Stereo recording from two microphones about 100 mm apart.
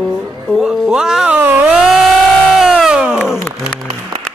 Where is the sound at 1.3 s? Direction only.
20° right (ahead or behind).